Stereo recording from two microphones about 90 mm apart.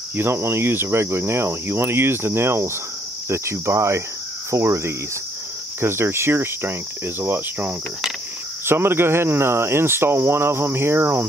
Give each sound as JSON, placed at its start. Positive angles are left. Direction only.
{"t": 0.1, "sound": "cricket", "side_deg": -25}